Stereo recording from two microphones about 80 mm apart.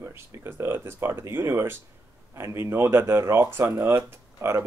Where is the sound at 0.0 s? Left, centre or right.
Right.